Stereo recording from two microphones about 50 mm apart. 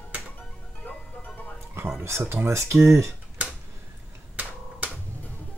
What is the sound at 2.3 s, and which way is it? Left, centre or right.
Speech, right.